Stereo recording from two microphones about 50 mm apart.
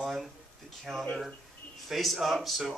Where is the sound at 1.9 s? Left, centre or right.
Centre.